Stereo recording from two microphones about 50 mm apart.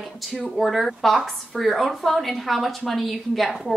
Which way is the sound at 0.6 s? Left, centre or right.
Centre.